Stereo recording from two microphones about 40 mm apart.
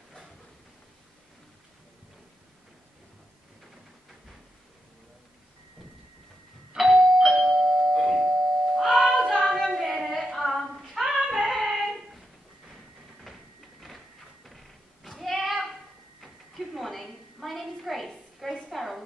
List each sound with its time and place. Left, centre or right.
6.8 s doorbell: centre
9.3 s a sound: centre
9.6 s child singing: centre
10.2 s female singing: centre
11.2 s singing: centre
13.2 s a sound: centre